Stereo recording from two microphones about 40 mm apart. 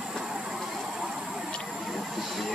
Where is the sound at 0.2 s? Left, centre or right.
Centre.